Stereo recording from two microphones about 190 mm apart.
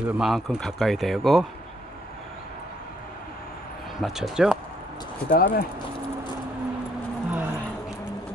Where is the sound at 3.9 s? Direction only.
Centre (ahead or behind).